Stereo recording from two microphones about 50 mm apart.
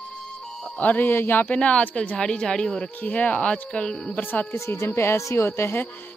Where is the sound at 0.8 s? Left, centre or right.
Left.